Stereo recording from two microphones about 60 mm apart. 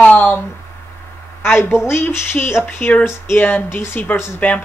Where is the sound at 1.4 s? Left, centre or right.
Left.